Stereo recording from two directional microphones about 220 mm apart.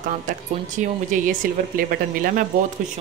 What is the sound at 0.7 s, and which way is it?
A woman's voice, 35° right (ahead or behind).